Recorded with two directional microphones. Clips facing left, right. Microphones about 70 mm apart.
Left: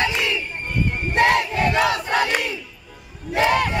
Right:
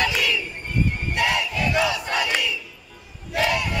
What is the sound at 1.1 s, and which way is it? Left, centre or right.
Battle cry, left.